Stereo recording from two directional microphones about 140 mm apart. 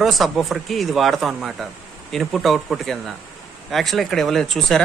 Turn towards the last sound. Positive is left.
turn(degrees=0)  # may be behind; listen again after turning